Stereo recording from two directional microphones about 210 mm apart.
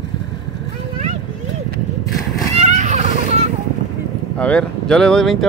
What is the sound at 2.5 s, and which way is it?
Children playing, 35° right (ahead or behind).